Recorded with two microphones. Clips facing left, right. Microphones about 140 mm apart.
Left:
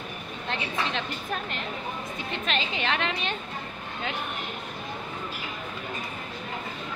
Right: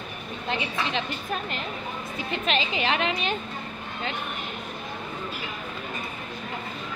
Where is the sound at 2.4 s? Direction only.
5° right (ahead or behind).